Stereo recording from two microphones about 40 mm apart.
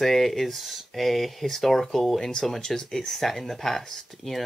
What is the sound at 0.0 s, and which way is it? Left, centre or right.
Speech, centre.